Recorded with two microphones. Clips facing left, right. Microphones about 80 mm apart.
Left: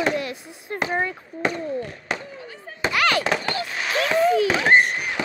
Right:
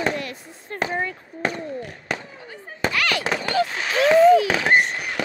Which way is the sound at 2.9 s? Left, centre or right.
Left.